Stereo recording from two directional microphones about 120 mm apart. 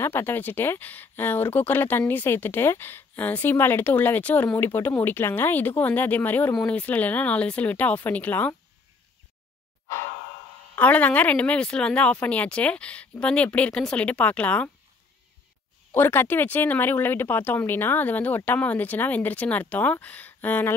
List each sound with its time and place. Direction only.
0.0 s speech: 20° left (ahead or behind)
10.8 s speech: 15° left (ahead or behind)
15.9 s speech: 20° left (ahead or behind)